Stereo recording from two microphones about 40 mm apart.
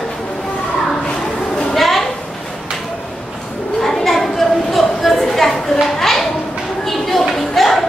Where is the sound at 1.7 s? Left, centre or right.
Centre.